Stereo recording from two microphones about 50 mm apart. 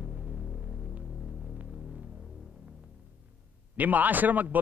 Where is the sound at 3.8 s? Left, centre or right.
Right.